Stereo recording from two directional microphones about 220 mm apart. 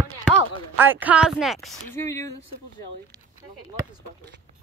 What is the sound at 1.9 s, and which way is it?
Speech, 15° left (ahead or behind).